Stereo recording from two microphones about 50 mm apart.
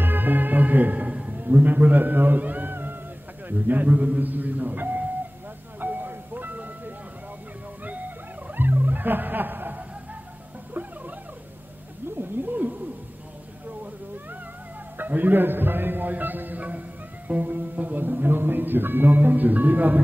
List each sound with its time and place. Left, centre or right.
0.0 s music: right
3.4 s speech: right
5.8 s music: right
8.5 s music: right
10.7 s a sound: right
12.2 s wild animals: right
15.0 s music: right
17.7 s speech: right